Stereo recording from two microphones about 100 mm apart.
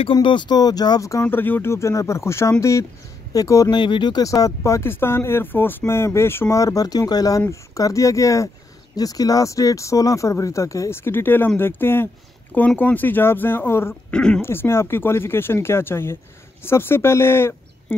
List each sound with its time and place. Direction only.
0.0 s speech: 55° left (ahead or behind); by 1.2 s 35° left (ahead or behind)
1.2 s speech: 20° left (ahead or behind)
3.7 s speech: 50° left (ahead or behind); by 13.9 s 25° left (ahead or behind)
14.1 s speech: 10° left (ahead or behind)
14.4 s speech: 25° left (ahead or behind)